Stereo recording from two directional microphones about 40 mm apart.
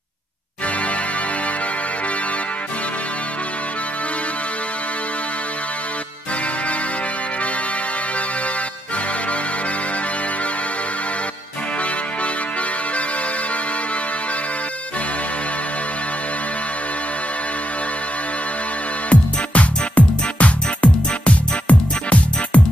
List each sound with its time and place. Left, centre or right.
19.0 s music: left